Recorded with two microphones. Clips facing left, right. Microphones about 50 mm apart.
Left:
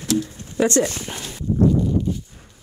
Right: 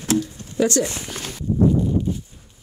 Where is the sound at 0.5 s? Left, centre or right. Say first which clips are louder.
Left 1 dB; left.